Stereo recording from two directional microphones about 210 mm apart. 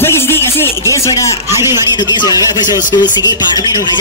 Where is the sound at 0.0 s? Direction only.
10° left (ahead or behind).